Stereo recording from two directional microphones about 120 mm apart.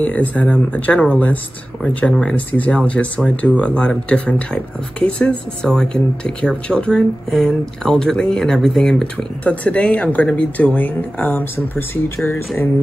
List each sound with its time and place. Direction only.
0.0 s speech: 10° left (ahead or behind)